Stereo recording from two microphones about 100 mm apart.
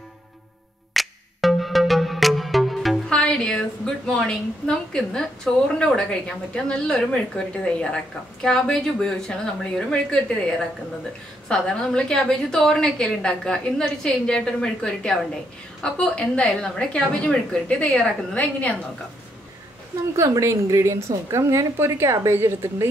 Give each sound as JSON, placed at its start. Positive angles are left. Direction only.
{"t": 0.9, "sound": "music", "side_deg": 0}
{"t": 4.1, "sound": "a woman's voice", "side_deg": 5}
{"t": 11.4, "sound": "a woman's voice", "side_deg": 5}
{"t": 20.2, "sound": "a woman's voice", "side_deg": -30}